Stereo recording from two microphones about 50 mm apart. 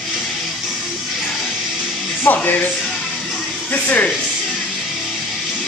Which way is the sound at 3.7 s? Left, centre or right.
Left.